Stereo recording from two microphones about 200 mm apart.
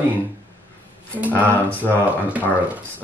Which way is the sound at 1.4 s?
10° left (ahead or behind).